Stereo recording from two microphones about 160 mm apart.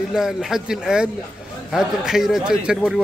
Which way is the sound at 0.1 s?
5° right (ahead or behind).